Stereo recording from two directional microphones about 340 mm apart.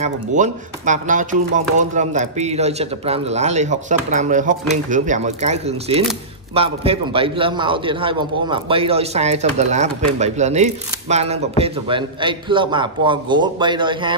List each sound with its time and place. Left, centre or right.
0.0 s a man's voice: right